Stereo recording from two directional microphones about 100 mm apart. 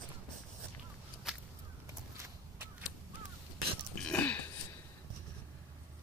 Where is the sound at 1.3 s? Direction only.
5° right (ahead or behind).